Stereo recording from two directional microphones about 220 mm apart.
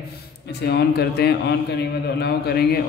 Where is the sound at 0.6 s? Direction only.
50° left (ahead or behind).